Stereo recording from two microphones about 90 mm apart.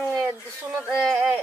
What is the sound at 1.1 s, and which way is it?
Speech, 20° right (ahead or behind).